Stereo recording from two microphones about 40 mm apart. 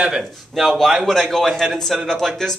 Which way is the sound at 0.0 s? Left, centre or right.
Centre.